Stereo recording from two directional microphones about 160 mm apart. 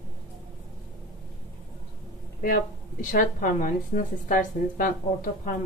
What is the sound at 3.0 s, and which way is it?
Speech, 55° left (ahead or behind).